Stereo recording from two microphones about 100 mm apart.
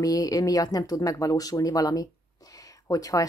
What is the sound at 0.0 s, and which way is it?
Speech, 40° left (ahead or behind).